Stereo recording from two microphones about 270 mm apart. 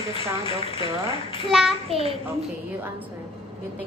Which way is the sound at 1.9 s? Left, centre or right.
Right.